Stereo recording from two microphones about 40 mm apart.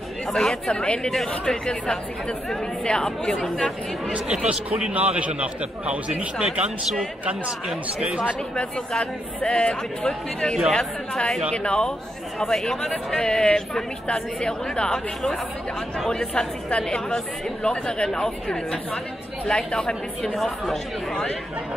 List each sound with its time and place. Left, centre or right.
0.3 s speech: centre
0.7 s speech: left
4.1 s a man's voice: right
8.0 s speech: right
9.4 s speech: left
12.4 s speech: centre
13.2 s speech: left
16.1 s speech: centre
20.3 s speech: centre
21.1 s speech: centre